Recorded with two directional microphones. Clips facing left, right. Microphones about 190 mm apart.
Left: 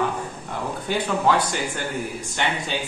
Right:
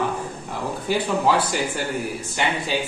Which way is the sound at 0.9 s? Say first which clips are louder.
Right 1 dB; 10° right (ahead or behind).